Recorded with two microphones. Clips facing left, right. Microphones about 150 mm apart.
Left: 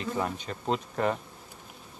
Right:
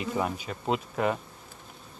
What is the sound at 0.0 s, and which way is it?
Speech, 10° right (ahead or behind).